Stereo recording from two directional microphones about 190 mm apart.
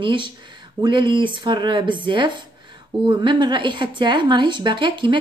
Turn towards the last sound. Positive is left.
turn(degrees=-25)  # may be behind; listen again after turning